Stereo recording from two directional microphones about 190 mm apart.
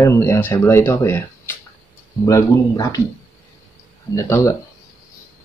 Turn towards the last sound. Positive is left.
turn(degrees=15)  # may be behind; listen again after turning